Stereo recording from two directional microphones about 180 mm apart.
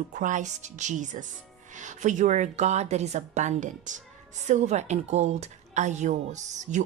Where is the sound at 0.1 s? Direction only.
45° right (ahead or behind).